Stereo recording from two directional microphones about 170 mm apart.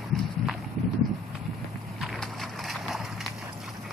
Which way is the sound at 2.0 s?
Centre (ahead or behind).